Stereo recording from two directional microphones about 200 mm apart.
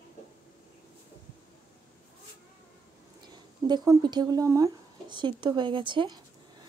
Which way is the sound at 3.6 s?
20° right (ahead or behind).